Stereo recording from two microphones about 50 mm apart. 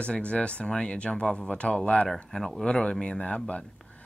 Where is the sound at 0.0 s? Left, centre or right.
Left.